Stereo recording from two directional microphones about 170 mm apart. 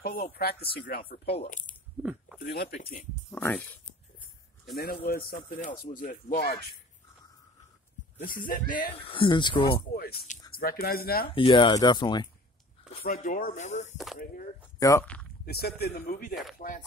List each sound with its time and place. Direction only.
0.0 s speech: 60° left (ahead or behind)
2.0 s speech: 10° right (ahead or behind)
2.4 s speech: 65° left (ahead or behind)
3.3 s speech: 10° left (ahead or behind)
4.7 s speech: 65° left (ahead or behind); by 6.6 s 50° left (ahead or behind)
8.3 s speech: 55° left (ahead or behind)
8.9 s speech: 30° left (ahead or behind)
9.9 s a sound: 55° left (ahead or behind)
10.5 s speech: 60° left (ahead or behind)
11.2 s speech: 30° left (ahead or behind)
13.0 s speech: 55° left (ahead or behind)
14.1 s a sound: 55° left (ahead or behind)
14.8 s speech: 20° left (ahead or behind)
15.4 s speech: 65° left (ahead or behind)